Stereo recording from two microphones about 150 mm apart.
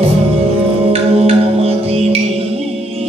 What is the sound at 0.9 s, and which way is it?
Music, 40° right (ahead or behind).